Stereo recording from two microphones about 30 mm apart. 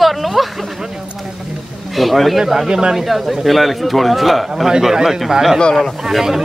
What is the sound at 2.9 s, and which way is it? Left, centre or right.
Speech, centre.